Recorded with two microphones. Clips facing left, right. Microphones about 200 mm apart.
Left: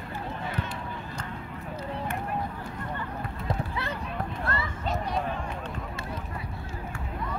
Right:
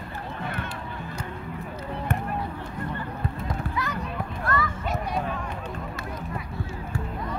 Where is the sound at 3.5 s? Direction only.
30° left (ahead or behind).